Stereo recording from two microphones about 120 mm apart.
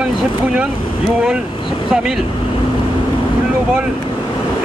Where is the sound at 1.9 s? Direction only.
5° right (ahead or behind).